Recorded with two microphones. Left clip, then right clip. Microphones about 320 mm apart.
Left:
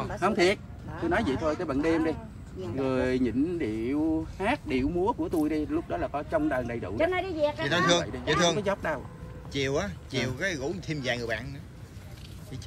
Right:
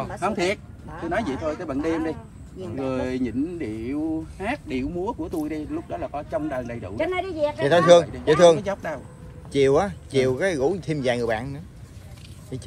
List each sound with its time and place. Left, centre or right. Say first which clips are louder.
0.2 s a man's voice: even; centre
7.0 s speech: right 2 dB; right
7.6 s a man's voice: right 13 dB; centre
8.6 s speech: right 1 dB; centre
9.5 s speech: right 10 dB; centre